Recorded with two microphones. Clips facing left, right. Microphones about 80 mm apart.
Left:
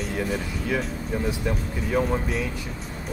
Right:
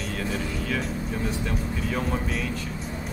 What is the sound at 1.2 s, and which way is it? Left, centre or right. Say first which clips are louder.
Speech: left 2 dB; centre.